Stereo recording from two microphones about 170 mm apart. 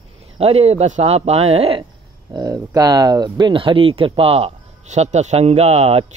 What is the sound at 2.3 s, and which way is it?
Speech, 25° right (ahead or behind).